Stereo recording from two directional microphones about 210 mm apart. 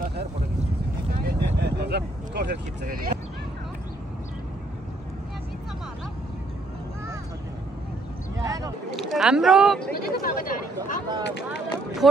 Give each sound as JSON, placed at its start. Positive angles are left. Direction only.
{"t": 0.0, "sound": "boat", "side_deg": -50}
{"t": 1.2, "sound": "vehicle", "side_deg": -50}
{"t": 8.4, "sound": "a sound", "side_deg": -15}
{"t": 8.9, "sound": "speech", "side_deg": 0}
{"t": 9.9, "sound": "chatter", "side_deg": 45}
{"t": 11.2, "sound": "speech", "side_deg": 55}
{"t": 12.0, "sound": "speech", "side_deg": 0}